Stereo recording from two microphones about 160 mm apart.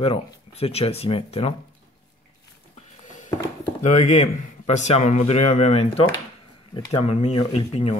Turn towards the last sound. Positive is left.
turn(degrees=40)  # may be behind; listen again after turning